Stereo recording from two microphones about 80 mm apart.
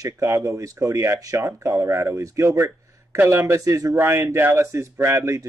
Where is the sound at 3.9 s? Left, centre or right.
Right.